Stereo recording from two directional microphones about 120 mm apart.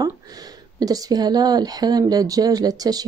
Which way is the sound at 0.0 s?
30° right (ahead or behind).